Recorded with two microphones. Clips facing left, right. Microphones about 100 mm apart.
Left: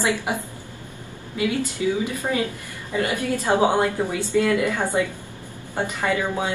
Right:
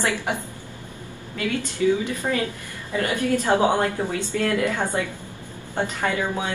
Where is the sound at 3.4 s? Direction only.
15° left (ahead or behind).